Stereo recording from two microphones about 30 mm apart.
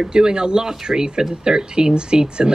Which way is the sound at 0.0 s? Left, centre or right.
Right.